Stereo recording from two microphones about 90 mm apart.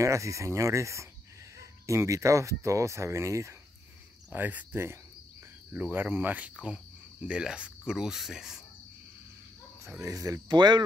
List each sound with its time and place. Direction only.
0.0 s speech: 35° right (ahead or behind)
4.3 s speech: 20° right (ahead or behind)
5.7 s cricket: 20° right (ahead or behind)
10.0 s speech: 40° right (ahead or behind)
10.5 s speech: 55° right (ahead or behind)